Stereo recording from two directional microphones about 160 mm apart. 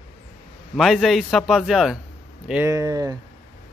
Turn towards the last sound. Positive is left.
turn(degrees=-20)  # may be behind; listen again after turning